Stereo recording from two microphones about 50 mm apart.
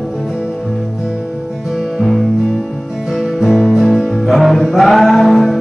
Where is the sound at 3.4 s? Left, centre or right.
Centre.